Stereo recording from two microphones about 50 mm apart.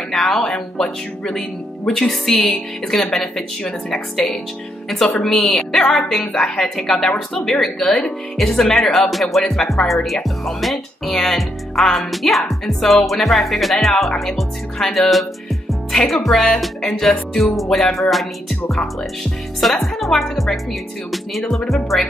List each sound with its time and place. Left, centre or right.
0.1 s speech: centre
1.9 s speech: centre
3.6 s speech: left
4.8 s speech: centre
19.6 s a woman's voice: centre